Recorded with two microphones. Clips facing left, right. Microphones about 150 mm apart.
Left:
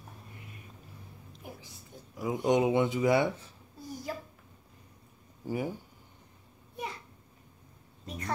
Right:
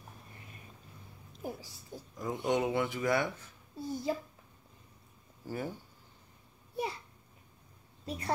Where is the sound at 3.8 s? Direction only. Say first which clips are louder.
Right 5 dB; 25° right (ahead or behind).